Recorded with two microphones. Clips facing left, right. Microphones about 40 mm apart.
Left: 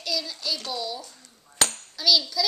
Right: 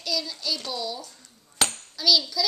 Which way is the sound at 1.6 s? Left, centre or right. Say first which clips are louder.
Even; centre.